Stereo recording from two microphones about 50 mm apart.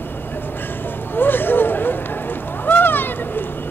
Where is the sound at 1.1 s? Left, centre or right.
Left.